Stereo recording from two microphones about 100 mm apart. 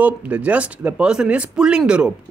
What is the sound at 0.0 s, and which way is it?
Speech, 15° right (ahead or behind).